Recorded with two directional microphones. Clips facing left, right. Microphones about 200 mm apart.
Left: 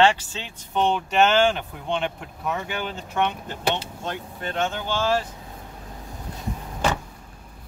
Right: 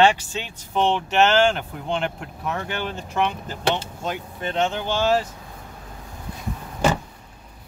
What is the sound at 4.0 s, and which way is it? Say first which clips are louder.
Speech: right 3 dB; 15° right (ahead or behind).